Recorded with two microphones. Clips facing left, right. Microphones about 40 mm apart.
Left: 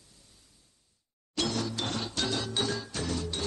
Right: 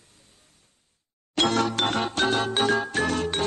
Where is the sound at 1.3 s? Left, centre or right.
Right.